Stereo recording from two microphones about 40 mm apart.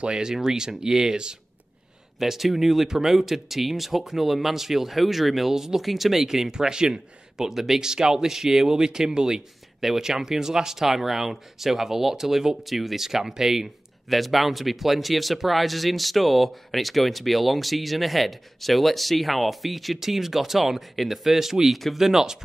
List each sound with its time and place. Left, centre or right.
0.0 s speech: right
2.1 s speech: centre
14.0 s speech: centre